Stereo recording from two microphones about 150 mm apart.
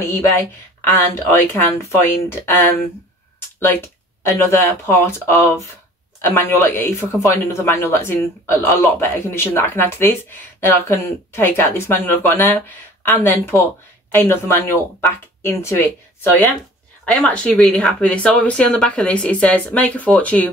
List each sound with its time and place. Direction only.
0.8 s speech: 15° left (ahead or behind)
17.1 s speech: 5° left (ahead or behind)